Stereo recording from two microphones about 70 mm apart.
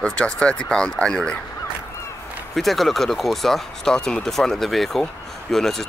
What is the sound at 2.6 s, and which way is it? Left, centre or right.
Speech, centre.